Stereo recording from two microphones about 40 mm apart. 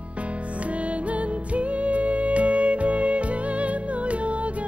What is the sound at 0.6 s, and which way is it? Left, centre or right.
Music, right.